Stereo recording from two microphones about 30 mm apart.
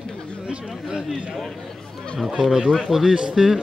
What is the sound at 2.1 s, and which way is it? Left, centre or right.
Speech, centre.